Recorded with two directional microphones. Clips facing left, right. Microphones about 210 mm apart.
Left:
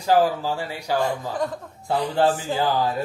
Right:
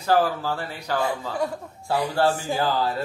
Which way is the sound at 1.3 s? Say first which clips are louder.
Even; 10° right (ahead or behind).